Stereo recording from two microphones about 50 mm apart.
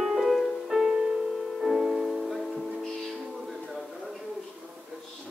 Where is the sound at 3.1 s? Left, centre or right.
Centre.